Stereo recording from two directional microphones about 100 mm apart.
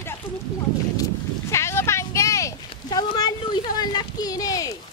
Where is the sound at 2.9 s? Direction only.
40° left (ahead or behind).